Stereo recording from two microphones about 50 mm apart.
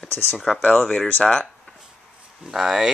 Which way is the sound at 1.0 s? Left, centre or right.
Left.